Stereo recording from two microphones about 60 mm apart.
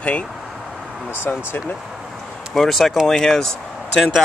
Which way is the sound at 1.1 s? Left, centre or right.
Left.